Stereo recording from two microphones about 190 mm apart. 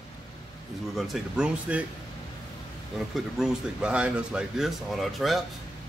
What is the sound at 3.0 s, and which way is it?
Speech, centre (ahead or behind).